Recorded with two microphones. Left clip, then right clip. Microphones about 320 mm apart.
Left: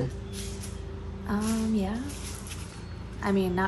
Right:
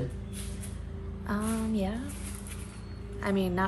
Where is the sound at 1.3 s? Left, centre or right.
Centre.